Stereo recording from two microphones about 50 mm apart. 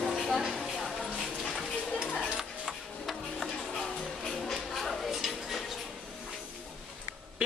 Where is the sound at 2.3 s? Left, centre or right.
Centre.